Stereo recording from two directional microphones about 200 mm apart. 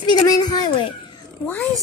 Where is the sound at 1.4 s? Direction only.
10° left (ahead or behind).